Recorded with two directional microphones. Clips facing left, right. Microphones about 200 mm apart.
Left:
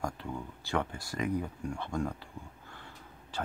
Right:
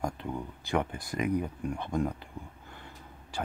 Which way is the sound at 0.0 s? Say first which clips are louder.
Right 3 dB; 20° right (ahead or behind).